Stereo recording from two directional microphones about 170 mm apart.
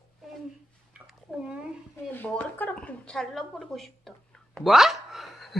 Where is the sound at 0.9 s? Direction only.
5° right (ahead or behind).